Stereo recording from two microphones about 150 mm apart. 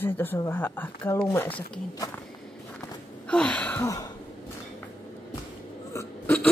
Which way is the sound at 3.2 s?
10° left (ahead or behind).